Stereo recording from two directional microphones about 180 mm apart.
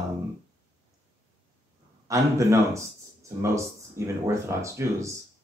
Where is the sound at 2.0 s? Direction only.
15° right (ahead or behind).